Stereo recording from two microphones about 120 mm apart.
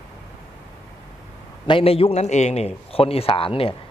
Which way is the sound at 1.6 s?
50° left (ahead or behind).